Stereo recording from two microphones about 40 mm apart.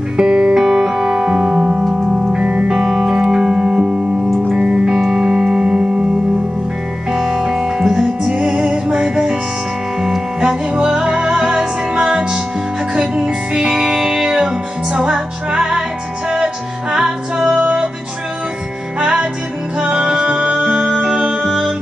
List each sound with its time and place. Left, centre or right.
0.2 s music: centre
7.1 s music: centre
16.9 s music: centre
18.9 s music: right